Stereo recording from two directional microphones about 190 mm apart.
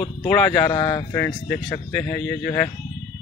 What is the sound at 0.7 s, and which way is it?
Speech, 20° left (ahead or behind).